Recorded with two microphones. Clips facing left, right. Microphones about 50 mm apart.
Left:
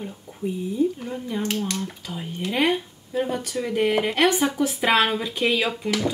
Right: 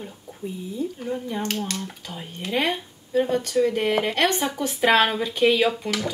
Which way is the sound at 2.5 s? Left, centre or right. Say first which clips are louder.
Left 2 dB; centre.